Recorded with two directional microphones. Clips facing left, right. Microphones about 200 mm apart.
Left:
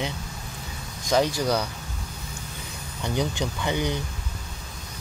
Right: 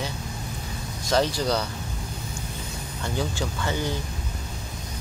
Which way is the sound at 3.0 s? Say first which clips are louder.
Left 2 dB; 15° left (ahead or behind).